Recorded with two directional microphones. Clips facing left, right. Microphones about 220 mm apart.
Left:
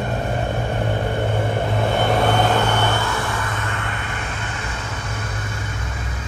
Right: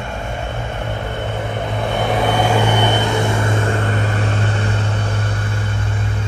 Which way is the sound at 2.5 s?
15° right (ahead or behind).